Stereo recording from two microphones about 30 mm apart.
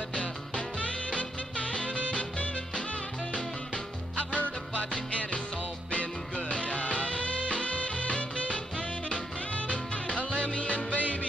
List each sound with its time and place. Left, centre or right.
0.1 s music: left
4.2 s music: left
5.9 s music: left
9.7 s music: left